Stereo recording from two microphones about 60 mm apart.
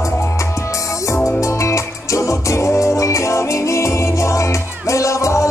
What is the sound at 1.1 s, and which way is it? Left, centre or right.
Music, left.